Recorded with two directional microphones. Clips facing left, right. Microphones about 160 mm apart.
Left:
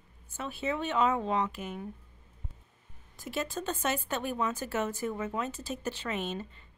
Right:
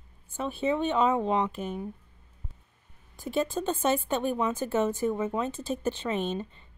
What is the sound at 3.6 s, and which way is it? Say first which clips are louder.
A woman's voice: right 6 dB; 25° right (ahead or behind).